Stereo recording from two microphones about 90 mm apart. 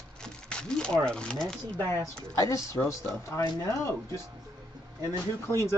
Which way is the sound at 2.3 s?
35° left (ahead or behind).